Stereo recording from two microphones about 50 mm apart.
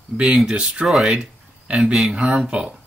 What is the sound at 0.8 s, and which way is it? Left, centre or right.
Speech, centre.